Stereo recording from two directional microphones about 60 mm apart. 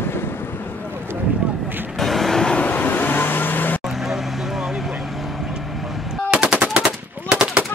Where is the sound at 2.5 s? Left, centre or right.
Left.